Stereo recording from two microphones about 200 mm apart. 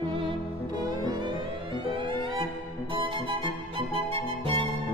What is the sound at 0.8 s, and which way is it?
Music, 20° right (ahead or behind).